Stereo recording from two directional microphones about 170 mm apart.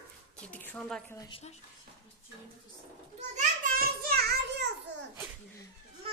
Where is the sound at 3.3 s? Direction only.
50° right (ahead or behind).